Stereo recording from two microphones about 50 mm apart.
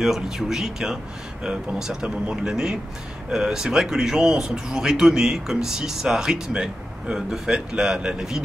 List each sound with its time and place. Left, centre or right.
0.0 s speech: centre